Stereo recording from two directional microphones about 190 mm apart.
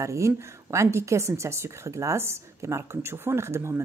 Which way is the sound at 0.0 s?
15° right (ahead or behind).